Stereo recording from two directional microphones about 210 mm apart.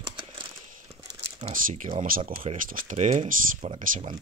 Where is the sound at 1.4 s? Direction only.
40° right (ahead or behind).